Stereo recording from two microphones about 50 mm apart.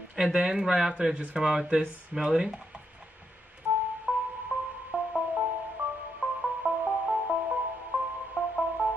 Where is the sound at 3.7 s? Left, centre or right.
Right.